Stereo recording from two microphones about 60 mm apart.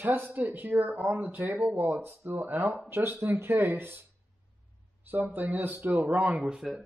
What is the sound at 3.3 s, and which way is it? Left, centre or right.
Speech, right.